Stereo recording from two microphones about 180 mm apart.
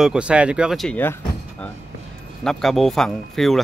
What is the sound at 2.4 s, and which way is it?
Speech, centre (ahead or behind).